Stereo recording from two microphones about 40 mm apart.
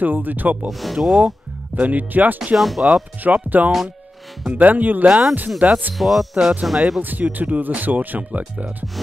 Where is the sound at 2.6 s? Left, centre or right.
Centre.